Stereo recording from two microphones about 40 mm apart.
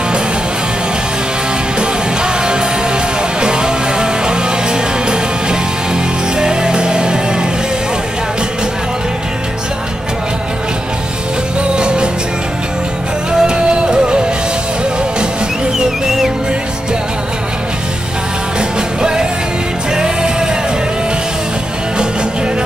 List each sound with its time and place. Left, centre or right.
1.8 s music: right
6.3 s music: centre
11.7 s music: right
13.3 s music: right
18.6 s music: right